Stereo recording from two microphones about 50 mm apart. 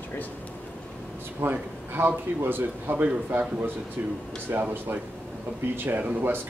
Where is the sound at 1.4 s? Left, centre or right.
Right.